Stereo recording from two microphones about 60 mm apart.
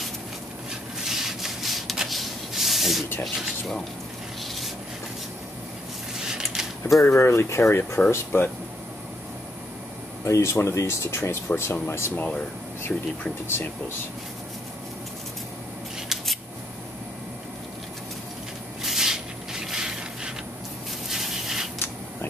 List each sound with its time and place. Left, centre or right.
0.7 s a sound: centre
3.3 s speech: centre
6.1 s a sound: centre
7.1 s speech: left
8.0 s speech: left
8.3 s speech: left
10.2 s speech: left
12.9 s speech: centre
13.5 s speech: left
18.8 s a sound: centre